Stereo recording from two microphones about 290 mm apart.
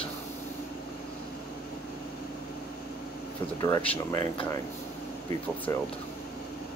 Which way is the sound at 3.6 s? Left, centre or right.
Centre.